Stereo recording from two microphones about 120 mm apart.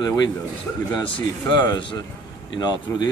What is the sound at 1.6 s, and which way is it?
Speech, 35° left (ahead or behind).